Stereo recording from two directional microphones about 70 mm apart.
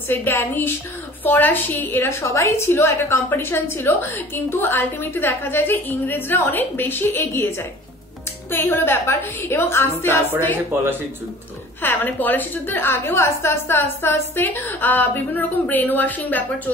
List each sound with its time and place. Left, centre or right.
0.1 s a woman's voice: left
2.2 s a woman's voice: left
11.8 s a woman's voice: left